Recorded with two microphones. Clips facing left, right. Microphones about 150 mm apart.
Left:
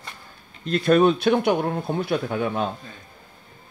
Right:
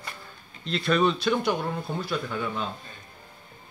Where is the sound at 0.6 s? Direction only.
50° left (ahead or behind).